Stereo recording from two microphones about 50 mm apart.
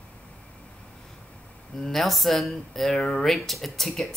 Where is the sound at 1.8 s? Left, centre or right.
Centre.